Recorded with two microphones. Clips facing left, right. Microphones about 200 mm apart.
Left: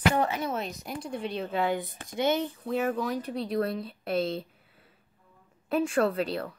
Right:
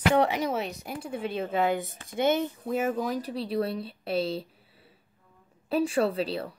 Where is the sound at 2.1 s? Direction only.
50° right (ahead or behind).